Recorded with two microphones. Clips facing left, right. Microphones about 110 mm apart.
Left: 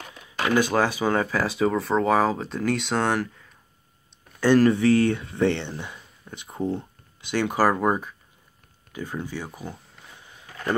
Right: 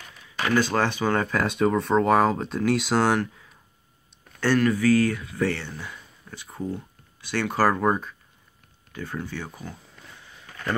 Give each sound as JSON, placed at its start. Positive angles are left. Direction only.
{"t": 0.6, "sound": "speech", "side_deg": 10}
{"t": 4.6, "sound": "speech", "side_deg": 25}